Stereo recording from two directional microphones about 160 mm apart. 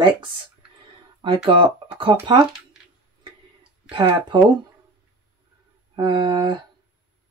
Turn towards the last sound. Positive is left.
turn(degrees=-30)  # may be behind; listen again after turning